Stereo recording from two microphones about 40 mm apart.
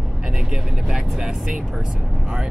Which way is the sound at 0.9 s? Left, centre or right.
Centre.